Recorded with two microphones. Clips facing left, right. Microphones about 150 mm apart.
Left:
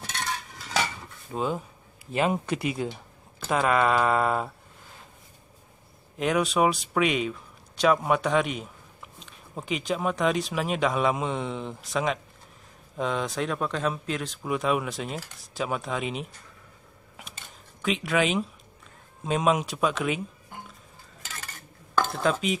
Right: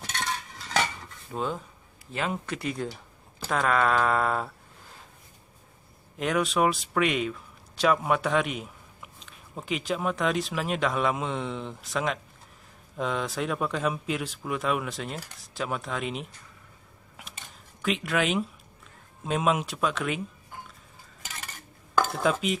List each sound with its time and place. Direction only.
1.3 s speech: 5° left (ahead or behind)
2.1 s speech: 20° left (ahead or behind)
6.1 s speech: centre (ahead or behind)
17.8 s speech: centre (ahead or behind)
21.9 s speech: 5° right (ahead or behind)